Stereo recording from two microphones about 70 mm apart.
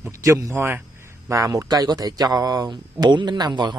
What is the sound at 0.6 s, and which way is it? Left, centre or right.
Speech, right.